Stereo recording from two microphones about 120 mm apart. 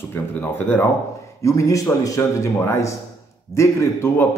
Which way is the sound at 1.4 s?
25° left (ahead or behind).